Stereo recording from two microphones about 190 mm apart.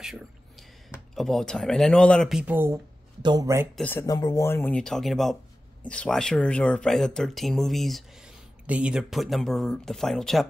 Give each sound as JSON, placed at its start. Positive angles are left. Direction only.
{"t": 0.0, "sound": "whispering", "side_deg": 0}
{"t": 1.1, "sound": "speech", "side_deg": 0}
{"t": 3.7, "sound": "speech", "side_deg": 10}